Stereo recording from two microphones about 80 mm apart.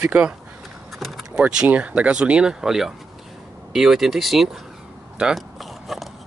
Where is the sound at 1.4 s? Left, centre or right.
Centre.